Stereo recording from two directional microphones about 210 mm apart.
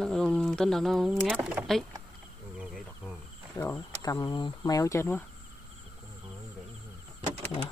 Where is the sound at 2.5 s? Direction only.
Centre (ahead or behind).